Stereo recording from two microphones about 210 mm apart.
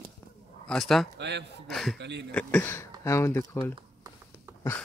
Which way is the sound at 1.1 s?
55° right (ahead or behind).